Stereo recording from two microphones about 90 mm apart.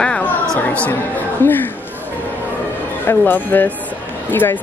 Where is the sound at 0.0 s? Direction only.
10° left (ahead or behind).